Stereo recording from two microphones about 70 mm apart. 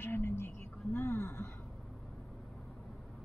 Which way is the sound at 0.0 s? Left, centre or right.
Left.